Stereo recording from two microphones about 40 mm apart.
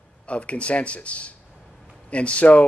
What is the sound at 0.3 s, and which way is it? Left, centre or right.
Speech, left.